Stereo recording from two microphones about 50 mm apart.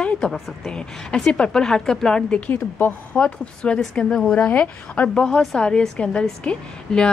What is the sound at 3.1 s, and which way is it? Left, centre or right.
Speech, left.